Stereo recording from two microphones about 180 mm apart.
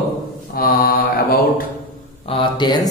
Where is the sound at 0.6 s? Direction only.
55° left (ahead or behind).